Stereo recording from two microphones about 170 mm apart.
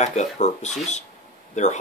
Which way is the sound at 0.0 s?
40° left (ahead or behind).